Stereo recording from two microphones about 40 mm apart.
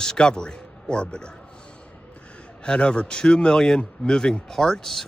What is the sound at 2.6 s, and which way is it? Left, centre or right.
Speech, left.